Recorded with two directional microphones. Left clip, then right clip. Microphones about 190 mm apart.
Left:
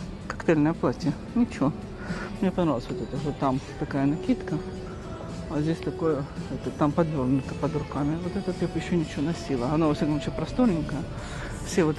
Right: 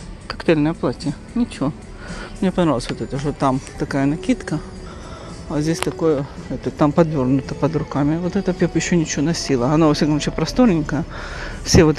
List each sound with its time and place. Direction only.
0.5 s speech: 15° right (ahead or behind)
2.4 s a man's voice: 30° right (ahead or behind)